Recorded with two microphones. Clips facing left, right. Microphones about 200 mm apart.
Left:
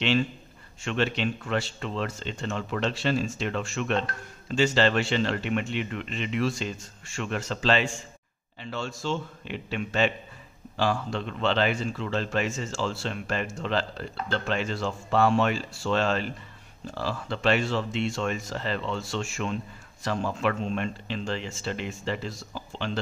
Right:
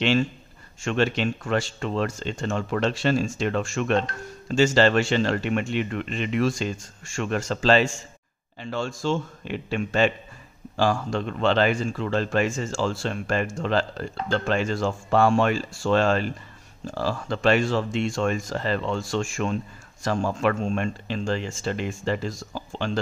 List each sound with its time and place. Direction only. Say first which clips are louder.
0.8 s speech: right 4 dB; 45° right (ahead or behind)